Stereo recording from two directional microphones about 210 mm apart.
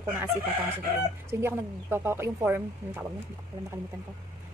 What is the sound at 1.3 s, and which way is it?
A woman's voice, 10° right (ahead or behind).